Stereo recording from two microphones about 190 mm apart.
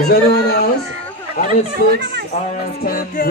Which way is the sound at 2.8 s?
50° left (ahead or behind).